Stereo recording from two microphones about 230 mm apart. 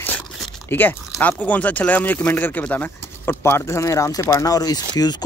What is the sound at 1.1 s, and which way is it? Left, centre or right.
Speech, centre.